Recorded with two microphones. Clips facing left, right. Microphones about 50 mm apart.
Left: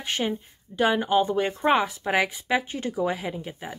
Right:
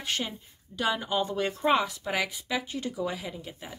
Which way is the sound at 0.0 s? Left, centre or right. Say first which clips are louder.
Left 5 dB; left.